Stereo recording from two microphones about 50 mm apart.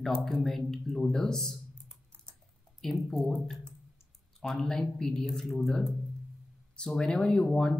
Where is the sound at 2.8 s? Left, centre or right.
Centre.